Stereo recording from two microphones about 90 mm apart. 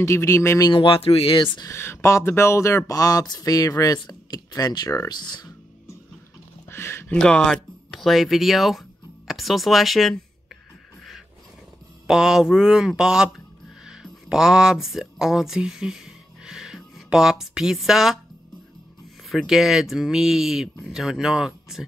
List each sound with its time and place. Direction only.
0.0 s speech: 35° left (ahead or behind)
0.7 s speech: 85° left
1.7 s speech: 30° left (ahead or behind); by 5.5 s 50° left (ahead or behind)
6.7 s a sound: 25° left (ahead or behind)
7.1 s speech: 10° left (ahead or behind)
12.1 s speech: 5° right (ahead or behind)
16.4 s a sound: 5° right (ahead or behind)
19.2 s speech: centre (ahead or behind)